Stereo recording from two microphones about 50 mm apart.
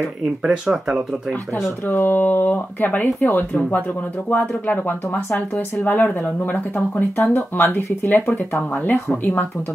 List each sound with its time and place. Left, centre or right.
0.4 s speech: right
1.9 s speech: left
7.2 s speech: left